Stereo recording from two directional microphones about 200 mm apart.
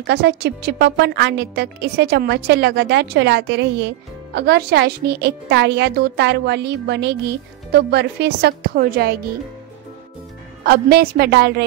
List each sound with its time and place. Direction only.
0.0 s a woman's voice: 55° right (ahead or behind)
10.6 s a woman's voice: 50° right (ahead or behind)